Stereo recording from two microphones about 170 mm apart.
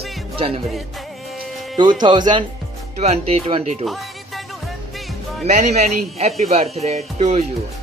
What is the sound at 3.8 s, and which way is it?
Music, centre (ahead or behind).